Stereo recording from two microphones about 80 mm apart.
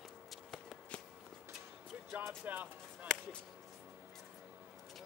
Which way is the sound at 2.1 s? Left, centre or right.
Right.